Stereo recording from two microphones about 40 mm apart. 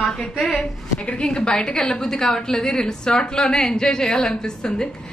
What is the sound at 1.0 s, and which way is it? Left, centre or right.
A woman's voice, left.